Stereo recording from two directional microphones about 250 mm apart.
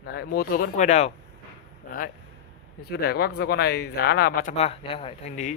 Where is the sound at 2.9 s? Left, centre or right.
Left.